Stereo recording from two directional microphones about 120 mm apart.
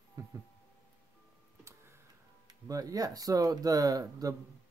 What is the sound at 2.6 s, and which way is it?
Speech, 30° right (ahead or behind).